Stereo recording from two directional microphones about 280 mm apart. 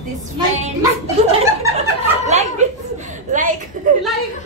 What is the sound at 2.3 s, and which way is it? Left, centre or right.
Speech, right.